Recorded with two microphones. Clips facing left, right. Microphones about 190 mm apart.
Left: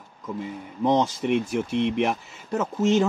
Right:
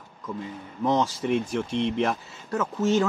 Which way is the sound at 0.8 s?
20° left (ahead or behind).